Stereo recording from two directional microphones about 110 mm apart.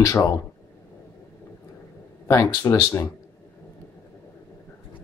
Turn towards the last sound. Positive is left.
turn(degrees=25)  # may be behind; listen again after turning